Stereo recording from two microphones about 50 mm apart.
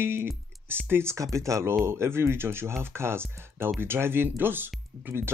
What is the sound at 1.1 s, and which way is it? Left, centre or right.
Speech, right.